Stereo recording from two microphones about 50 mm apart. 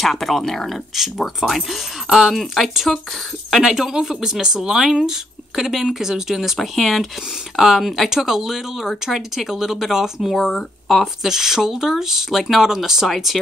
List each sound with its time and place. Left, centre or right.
0.0 s speech: centre
11.2 s speech: centre